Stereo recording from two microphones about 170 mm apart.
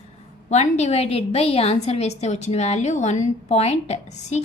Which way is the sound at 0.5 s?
40° left (ahead or behind).